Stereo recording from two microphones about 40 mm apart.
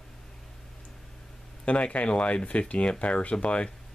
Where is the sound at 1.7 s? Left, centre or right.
Left.